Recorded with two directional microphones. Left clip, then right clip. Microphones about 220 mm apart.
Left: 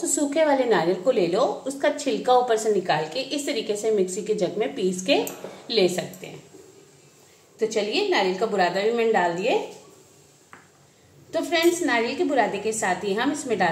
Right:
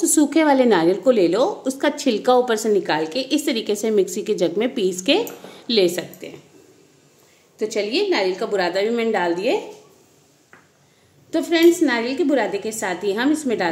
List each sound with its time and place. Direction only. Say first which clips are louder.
0.0 s a woman's voice: right 5 dB; 50° right (ahead or behind)
7.5 s a woman's voice: right 2 dB; 50° right (ahead or behind)
11.2 s a woman's voice: right 6 dB; 50° right (ahead or behind)